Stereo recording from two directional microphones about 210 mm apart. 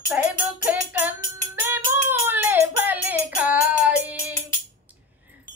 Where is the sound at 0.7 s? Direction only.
5° right (ahead or behind).